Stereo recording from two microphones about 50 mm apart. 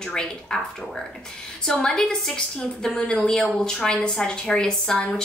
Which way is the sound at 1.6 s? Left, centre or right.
Centre.